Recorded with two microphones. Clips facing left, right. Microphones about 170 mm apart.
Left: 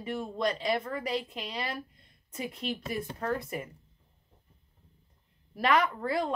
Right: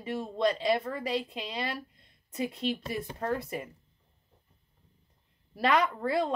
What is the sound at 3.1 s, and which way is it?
Speech, 30° right (ahead or behind).